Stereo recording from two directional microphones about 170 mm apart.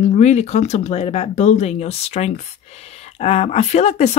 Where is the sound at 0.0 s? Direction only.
40° left (ahead or behind).